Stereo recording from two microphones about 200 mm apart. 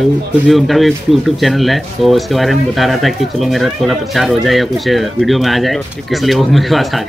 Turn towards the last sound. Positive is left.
turn(degrees=0)  # may be behind; listen again after turning